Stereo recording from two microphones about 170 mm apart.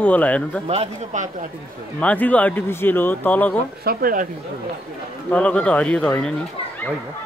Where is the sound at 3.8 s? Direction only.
55° right (ahead or behind).